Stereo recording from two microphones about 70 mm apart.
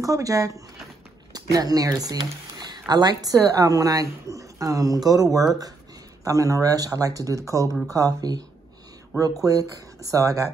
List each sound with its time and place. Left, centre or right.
0.0 s speech: right
1.3 s speech: right
2.6 s a woman's voice: right
7.9 s a woman's voice: right